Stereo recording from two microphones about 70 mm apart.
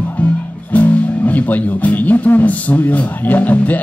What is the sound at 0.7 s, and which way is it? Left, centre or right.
Speech, left.